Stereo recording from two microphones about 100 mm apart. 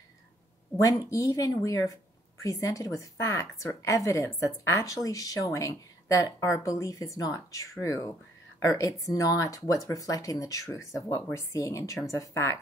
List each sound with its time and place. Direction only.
0.7 s a woman's voice: 35° left (ahead or behind)